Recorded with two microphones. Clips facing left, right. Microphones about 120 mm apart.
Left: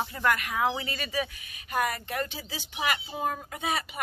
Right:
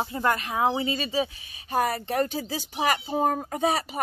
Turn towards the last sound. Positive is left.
turn(degrees=-40)  # may be behind; listen again after turning